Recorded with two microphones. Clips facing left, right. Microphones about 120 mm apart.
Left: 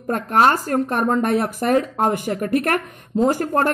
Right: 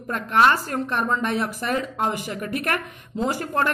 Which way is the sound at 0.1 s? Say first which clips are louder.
Left 2 dB; 40° left (ahead or behind).